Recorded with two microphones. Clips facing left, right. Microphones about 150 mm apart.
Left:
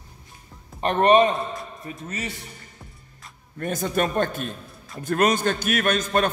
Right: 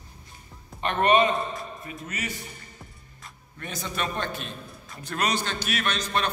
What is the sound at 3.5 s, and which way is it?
A man's voice, 50° left (ahead or behind).